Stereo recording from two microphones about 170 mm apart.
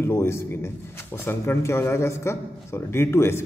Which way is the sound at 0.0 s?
15° left (ahead or behind).